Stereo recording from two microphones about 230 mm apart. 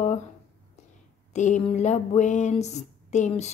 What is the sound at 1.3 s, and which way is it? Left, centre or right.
A woman's voice, left.